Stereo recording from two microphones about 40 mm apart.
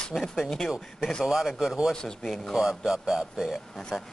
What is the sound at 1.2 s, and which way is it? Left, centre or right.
Speech, centre.